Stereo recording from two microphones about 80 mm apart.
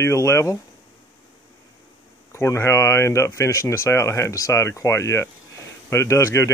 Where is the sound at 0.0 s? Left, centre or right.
Left.